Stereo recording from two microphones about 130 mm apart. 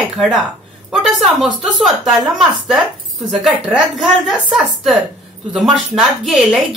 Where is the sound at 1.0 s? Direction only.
Centre (ahead or behind).